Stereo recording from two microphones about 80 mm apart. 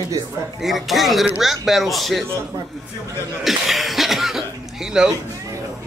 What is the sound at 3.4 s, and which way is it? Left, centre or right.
Speech, centre.